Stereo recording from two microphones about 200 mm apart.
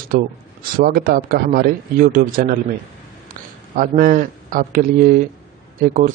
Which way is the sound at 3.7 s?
45° right (ahead or behind).